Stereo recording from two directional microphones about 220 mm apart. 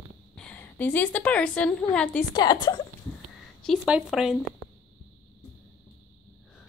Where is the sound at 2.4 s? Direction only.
20° left (ahead or behind).